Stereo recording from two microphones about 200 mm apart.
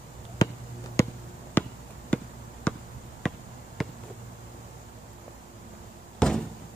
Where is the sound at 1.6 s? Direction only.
10° left (ahead or behind).